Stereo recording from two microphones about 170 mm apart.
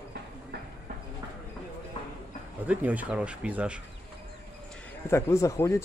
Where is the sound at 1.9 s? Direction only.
35° left (ahead or behind).